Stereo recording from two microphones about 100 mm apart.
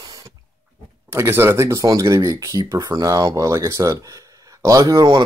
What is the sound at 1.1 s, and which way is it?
Speech, 25° right (ahead or behind).